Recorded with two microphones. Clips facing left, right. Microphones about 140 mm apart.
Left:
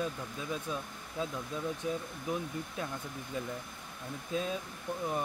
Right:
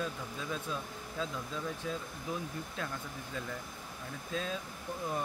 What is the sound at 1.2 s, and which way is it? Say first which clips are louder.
Speech: left 2 dB; 20° left (ahead or behind).